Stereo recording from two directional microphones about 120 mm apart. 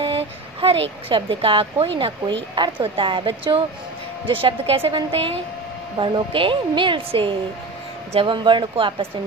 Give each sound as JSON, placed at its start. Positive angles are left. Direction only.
{"t": 0.0, "sound": "speech", "side_deg": -50}